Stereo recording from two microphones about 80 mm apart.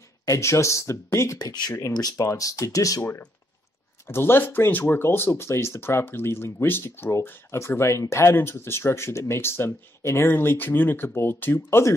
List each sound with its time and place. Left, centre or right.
0.2 s speech: left
1.4 s speech: left
4.1 s speech: left